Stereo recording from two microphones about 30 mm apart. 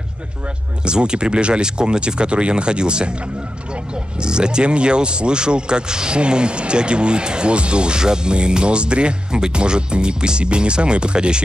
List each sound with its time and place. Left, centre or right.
0.8 s speech: right
4.2 s speech: right